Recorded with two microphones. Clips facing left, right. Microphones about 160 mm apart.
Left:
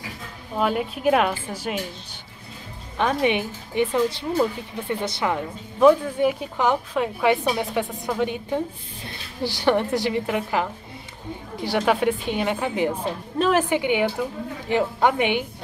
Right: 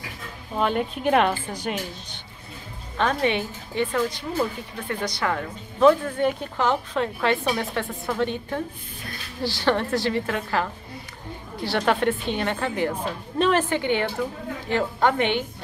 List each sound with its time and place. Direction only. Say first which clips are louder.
0.6 s speech: even; 5° left (ahead or behind)
3.0 s a woman's voice: left 1 dB; 15° left (ahead or behind)